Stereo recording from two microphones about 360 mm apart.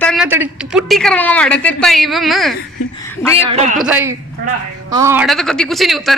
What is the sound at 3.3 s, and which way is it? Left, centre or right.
Speech, centre.